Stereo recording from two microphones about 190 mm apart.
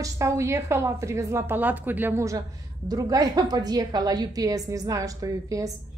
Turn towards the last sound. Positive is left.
turn(degrees=-15)  # may be behind; listen again after turning